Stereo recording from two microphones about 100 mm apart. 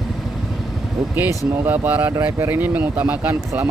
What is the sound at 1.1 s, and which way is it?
Speech, 20° right (ahead or behind).